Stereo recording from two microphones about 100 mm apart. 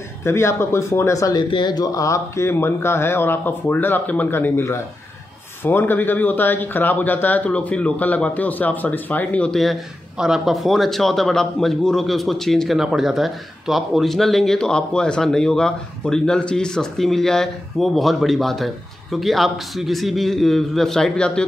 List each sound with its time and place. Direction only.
0.2 s speech: 25° left (ahead or behind)
1.5 s speech: 50° left (ahead or behind); by 21.5 s 10° left (ahead or behind)